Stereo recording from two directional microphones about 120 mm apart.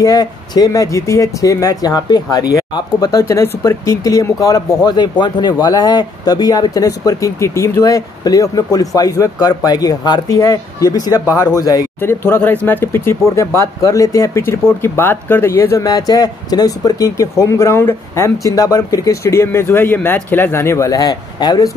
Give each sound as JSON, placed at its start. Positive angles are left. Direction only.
{"t": 0.0, "sound": "speech", "side_deg": 35}
{"t": 12.0, "sound": "speech", "side_deg": 20}